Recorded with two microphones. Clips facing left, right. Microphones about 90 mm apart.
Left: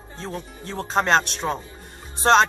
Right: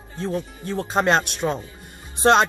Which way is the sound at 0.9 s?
10° right (ahead or behind).